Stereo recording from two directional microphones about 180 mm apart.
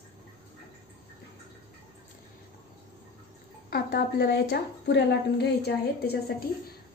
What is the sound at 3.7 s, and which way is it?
A woman's voice, 65° left (ahead or behind).